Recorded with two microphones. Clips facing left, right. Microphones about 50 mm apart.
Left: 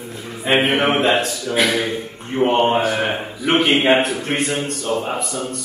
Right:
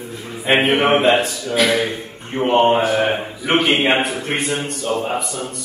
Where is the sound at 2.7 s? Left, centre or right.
Centre.